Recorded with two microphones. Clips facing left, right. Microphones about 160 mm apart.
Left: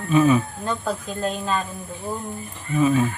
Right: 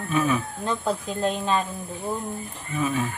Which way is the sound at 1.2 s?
30° right (ahead or behind).